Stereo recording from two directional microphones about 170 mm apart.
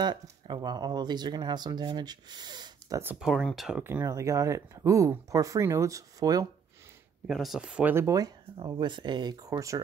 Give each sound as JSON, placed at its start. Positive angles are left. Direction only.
{"t": 0.0, "sound": "speech", "side_deg": -25}
{"t": 3.0, "sound": "speech", "side_deg": -5}
{"t": 3.8, "sound": "speech", "side_deg": -15}
{"t": 7.2, "sound": "speech", "side_deg": 0}